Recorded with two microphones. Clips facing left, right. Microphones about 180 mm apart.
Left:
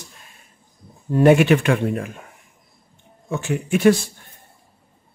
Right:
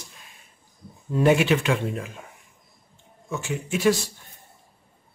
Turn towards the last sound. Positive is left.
turn(degrees=55)  # may be behind; listen again after turning